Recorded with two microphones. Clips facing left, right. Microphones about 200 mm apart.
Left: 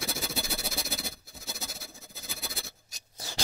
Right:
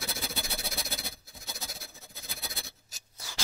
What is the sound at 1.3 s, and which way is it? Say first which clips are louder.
Scratch: left 2 dB; 5° left (ahead or behind).